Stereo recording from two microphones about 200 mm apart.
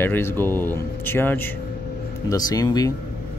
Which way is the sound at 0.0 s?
10° left (ahead or behind).